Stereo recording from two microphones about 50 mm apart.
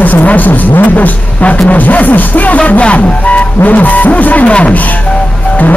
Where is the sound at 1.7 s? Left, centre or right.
Left.